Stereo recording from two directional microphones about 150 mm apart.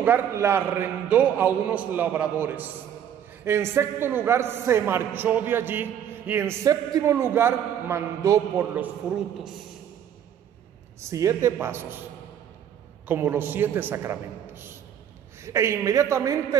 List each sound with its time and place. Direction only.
0.0 s a man's voice: 15° right (ahead or behind)
11.0 s a man's voice: 20° right (ahead or behind)
13.0 s a man's voice: 15° right (ahead or behind)